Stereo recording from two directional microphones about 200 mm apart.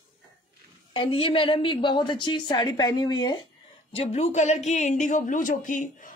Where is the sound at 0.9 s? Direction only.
25° left (ahead or behind).